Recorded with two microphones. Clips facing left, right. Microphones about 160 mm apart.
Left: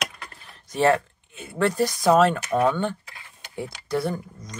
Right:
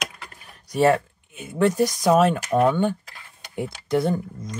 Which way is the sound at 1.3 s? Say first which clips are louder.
Right 3 dB; 15° right (ahead or behind).